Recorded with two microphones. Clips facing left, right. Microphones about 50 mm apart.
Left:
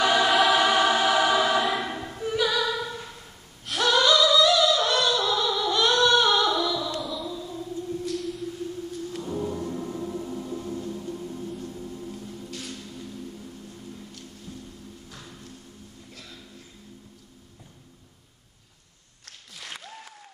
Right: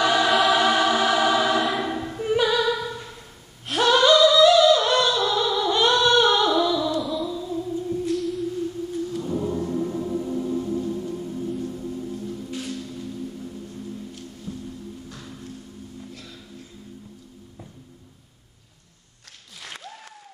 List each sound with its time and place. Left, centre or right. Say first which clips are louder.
0.0 s choir: right 1 dB; centre
2.3 s music: right 4 dB; centre
2.7 s a sound: right 3 dB; centre
3.9 s singing: right 4 dB; right
4.4 s music: right 5 dB; centre
5.9 s a capella: right 2 dB; centre
7.0 s music: right 6 dB; centre
7.7 s singing: right 2 dB; right
8.1 s music: right 6 dB; centre
9.2 s gong: right 1 dB; centre
12.4 s music: right 6 dB; centre
15.0 s music: right 5 dB; centre
19.6 s applause: right 2 dB; centre